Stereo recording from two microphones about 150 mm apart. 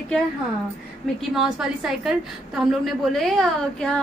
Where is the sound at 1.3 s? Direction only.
5° right (ahead or behind).